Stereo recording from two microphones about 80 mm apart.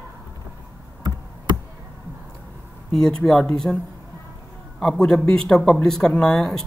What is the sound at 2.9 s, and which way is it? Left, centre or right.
Speech, centre.